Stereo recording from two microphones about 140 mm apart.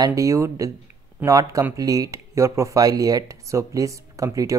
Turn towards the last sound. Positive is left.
turn(degrees=-25)  # may be behind; listen again after turning